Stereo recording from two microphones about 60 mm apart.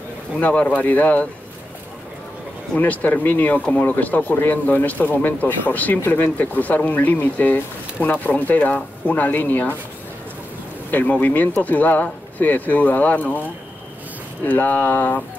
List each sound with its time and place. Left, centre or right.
0.4 s speech: left
2.8 s speech: left
10.9 s speech: left
14.4 s speech: left